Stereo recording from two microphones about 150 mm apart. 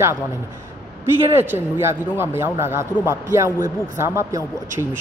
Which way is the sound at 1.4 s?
15° right (ahead or behind).